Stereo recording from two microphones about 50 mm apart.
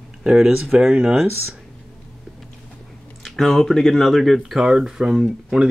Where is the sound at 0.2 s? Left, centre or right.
Centre.